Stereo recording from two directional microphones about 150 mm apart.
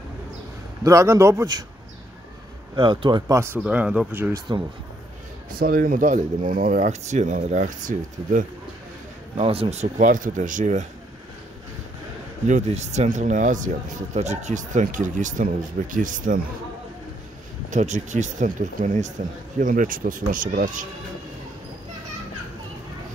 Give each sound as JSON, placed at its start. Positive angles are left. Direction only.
{"t": 0.8, "sound": "a man's voice", "side_deg": -20}
{"t": 2.7, "sound": "speech", "side_deg": -30}
{"t": 5.6, "sound": "speech", "side_deg": -65}
{"t": 9.4, "sound": "speech", "side_deg": -40}
{"t": 12.4, "sound": "speech", "side_deg": -50}
{"t": 17.6, "sound": "speech", "side_deg": -55}
{"t": 19.6, "sound": "speech", "side_deg": -65}